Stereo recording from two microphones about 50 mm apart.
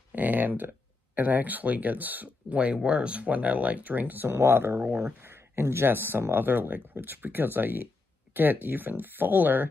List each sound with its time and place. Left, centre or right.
0.1 s speech: right
4.4 s speech: right
4.8 s speech: right
5.2 s speech: right